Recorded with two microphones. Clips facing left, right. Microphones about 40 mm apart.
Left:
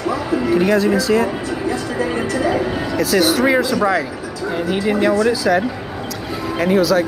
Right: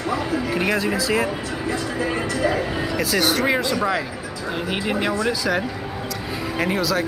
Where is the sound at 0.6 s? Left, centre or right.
Centre.